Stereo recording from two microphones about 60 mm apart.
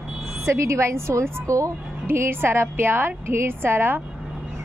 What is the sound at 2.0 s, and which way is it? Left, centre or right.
A woman's voice, right.